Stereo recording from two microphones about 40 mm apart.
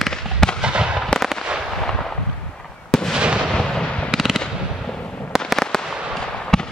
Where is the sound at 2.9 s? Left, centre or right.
Centre.